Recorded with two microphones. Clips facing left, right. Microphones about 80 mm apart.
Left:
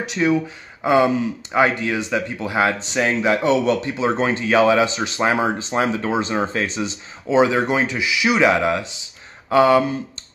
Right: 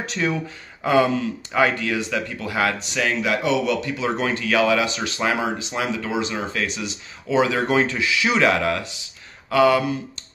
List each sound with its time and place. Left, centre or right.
0.0 s speech: centre